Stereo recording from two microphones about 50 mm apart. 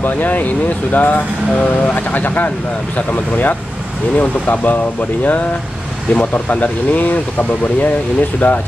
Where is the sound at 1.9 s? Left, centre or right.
Left.